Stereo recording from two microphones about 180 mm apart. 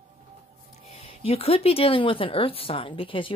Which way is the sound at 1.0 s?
30° left (ahead or behind).